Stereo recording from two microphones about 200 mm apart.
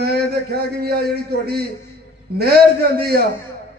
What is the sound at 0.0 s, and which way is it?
A man's voice, 55° right (ahead or behind).